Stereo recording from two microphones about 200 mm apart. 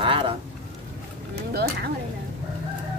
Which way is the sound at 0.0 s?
25° right (ahead or behind).